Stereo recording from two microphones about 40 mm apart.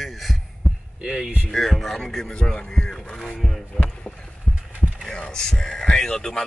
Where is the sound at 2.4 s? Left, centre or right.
Centre.